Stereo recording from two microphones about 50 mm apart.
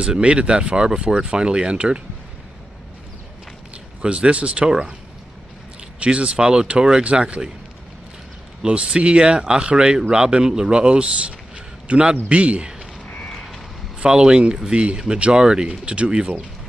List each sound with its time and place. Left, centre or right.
0.0 s speech: centre
4.0 s speech: right
5.9 s speech: right
8.6 s speech: right
13.9 s speech: centre